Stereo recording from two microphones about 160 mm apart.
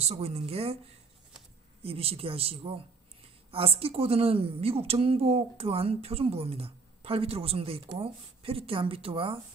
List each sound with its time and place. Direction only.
0.0 s a woman's voice: 40° right (ahead or behind)
1.8 s a woman's voice: 35° right (ahead or behind)